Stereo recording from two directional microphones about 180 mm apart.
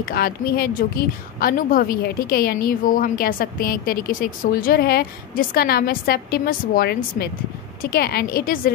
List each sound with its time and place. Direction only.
0.0 s a woman's voice: 55° left (ahead or behind)